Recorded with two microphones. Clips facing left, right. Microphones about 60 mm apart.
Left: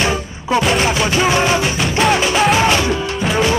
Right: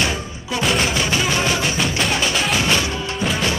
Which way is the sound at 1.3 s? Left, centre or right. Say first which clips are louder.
Left 5 dB; left.